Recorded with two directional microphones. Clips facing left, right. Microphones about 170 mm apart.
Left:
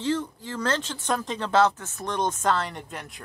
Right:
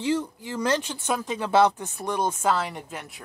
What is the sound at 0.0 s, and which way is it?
Speech, 10° right (ahead or behind).